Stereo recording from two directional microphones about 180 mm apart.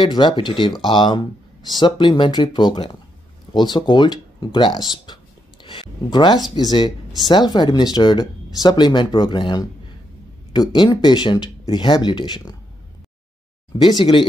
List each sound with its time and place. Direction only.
0.0 s speech: 25° left (ahead or behind)
13.7 s speech: 25° left (ahead or behind)